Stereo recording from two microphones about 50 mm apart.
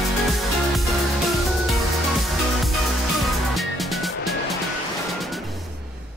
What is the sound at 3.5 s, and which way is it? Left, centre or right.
Music, centre.